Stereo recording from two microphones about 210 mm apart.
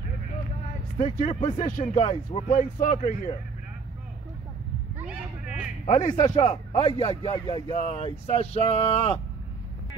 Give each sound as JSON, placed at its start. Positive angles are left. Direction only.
{"t": 0.9, "sound": "a man's voice", "side_deg": 30}
{"t": 4.9, "sound": "a sound", "side_deg": -5}
{"t": 6.0, "sound": "speech", "side_deg": 20}